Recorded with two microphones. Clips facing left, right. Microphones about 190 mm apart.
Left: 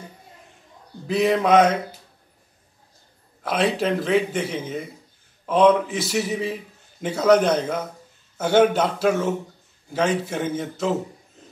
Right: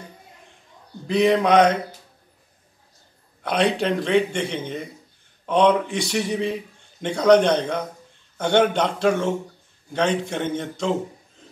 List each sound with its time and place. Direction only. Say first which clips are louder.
1.0 s a man's voice: right 1 dB; 5° left (ahead or behind)
3.4 s a man's voice: right 1 dB; 5° left (ahead or behind)